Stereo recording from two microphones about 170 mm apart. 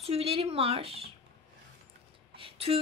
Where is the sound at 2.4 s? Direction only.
35° right (ahead or behind).